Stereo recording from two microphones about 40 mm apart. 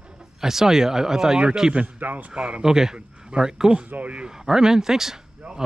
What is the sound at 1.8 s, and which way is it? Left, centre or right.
Speech, right.